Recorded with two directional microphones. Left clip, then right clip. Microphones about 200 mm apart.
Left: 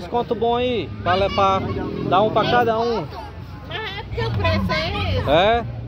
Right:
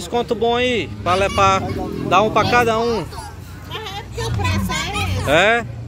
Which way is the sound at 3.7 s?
65° right (ahead or behind).